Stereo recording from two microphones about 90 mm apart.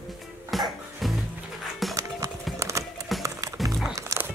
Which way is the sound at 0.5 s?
Centre (ahead or behind).